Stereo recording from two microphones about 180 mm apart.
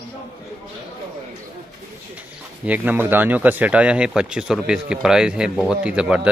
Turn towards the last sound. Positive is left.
turn(degrees=-5)  # may be behind; listen again after turning